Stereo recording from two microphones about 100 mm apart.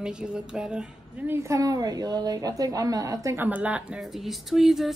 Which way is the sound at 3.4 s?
15° right (ahead or behind).